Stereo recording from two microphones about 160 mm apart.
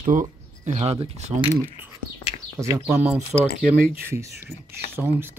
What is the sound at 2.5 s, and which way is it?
Speech, 15° right (ahead or behind).